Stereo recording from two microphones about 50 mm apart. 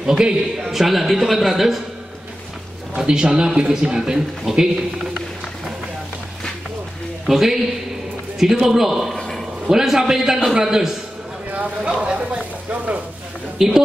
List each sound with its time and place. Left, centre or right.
0.0 s a man's voice: centre
3.0 s a man's voice: centre
7.2 s a man's voice: centre
8.6 s a man's voice: centre
9.1 s a sound: centre
9.7 s a man's voice: centre
11.8 s speech: centre
12.6 s a sound: right
13.6 s a man's voice: centre